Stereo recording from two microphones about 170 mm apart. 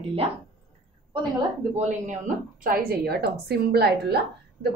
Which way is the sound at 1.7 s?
50° right (ahead or behind).